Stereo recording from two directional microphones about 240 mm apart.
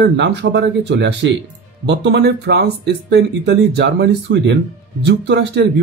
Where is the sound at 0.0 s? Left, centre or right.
Right.